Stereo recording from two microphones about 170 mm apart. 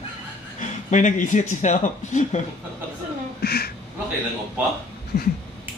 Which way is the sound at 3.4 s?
65° left (ahead or behind).